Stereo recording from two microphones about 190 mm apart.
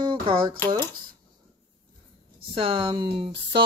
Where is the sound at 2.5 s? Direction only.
30° right (ahead or behind).